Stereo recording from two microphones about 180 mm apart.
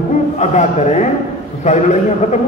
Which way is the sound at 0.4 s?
40° left (ahead or behind).